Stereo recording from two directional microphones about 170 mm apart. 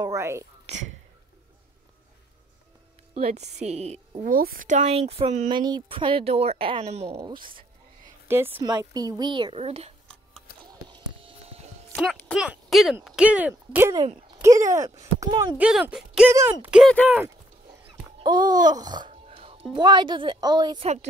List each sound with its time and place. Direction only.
0.0 s speech: 15° right (ahead or behind)
3.2 s speech: 40° right (ahead or behind)
4.3 s speech: 60° right (ahead or behind); by 5.5 s 40° right (ahead or behind)
5.5 s speech: 25° right (ahead or behind)
7.2 s a woman's voice: 25° right (ahead or behind)
8.3 s a woman's voice: 15° right (ahead or behind); by 9.9 s 35° right (ahead or behind)
10.9 s a sound: 30° right (ahead or behind)
11.9 s speech: centre (ahead or behind)
13.9 s a woman's voice: 30° right (ahead or behind)
14.4 s a woman's voice: 20° right (ahead or behind)
15.5 s speech: 10° right (ahead or behind)
18.2 s babbling: 25° right (ahead or behind)
19.7 s a woman's voice: 25° right (ahead or behind)
20.8 s speech: 40° right (ahead or behind)